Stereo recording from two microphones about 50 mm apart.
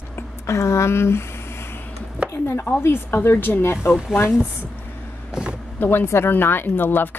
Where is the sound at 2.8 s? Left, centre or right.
Left.